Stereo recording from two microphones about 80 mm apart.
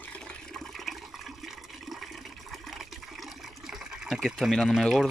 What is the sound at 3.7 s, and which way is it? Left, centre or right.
Water, centre.